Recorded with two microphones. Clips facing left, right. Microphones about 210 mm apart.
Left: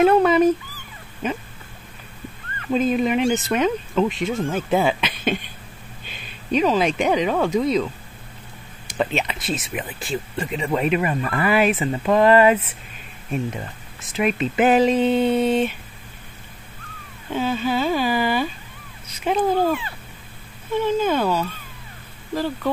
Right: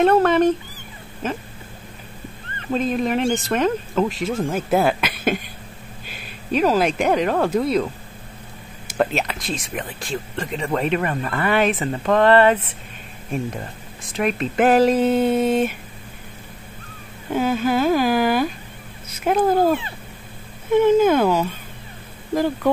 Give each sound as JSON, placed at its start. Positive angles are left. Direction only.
{"t": 0.0, "sound": "dog", "side_deg": 0}
{"t": 2.7, "sound": "speech", "side_deg": 0}
{"t": 8.9, "sound": "speech", "side_deg": 0}
{"t": 17.3, "sound": "speech", "side_deg": -10}